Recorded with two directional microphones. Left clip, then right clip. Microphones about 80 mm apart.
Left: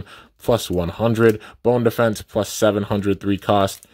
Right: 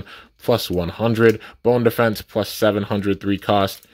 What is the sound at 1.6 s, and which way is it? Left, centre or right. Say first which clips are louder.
Speech: right 1 dB; left.